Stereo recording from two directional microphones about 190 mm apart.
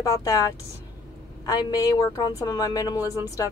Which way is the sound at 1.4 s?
20° left (ahead or behind).